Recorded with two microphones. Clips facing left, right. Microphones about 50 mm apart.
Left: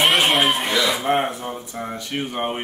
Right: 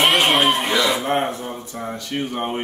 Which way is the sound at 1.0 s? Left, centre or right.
Centre.